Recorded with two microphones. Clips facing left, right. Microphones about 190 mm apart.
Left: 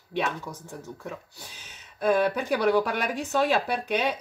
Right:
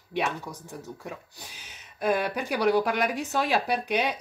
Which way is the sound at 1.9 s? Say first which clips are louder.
Left 3 dB; 15° right (ahead or behind).